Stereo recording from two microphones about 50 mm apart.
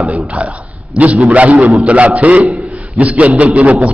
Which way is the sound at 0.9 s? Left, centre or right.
Right.